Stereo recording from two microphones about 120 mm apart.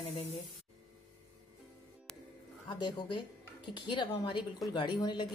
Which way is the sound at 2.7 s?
40° left (ahead or behind).